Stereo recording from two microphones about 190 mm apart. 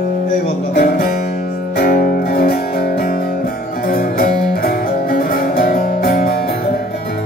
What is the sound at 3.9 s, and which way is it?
Music, 50° left (ahead or behind).